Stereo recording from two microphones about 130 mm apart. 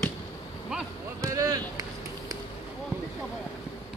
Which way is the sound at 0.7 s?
5° right (ahead or behind).